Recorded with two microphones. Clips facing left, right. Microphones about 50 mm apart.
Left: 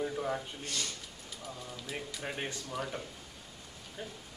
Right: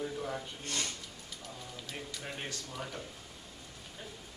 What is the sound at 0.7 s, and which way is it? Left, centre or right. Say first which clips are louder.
Speech: right 2 dB; right.